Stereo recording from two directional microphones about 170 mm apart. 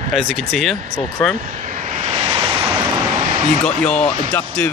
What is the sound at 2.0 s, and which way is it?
Waves, 35° right (ahead or behind).